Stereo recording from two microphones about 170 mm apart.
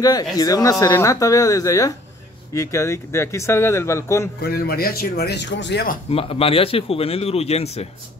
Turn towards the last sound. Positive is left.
turn(degrees=40)  # may be behind; listen again after turning